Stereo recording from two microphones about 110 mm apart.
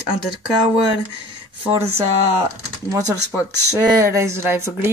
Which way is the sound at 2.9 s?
30° right (ahead or behind).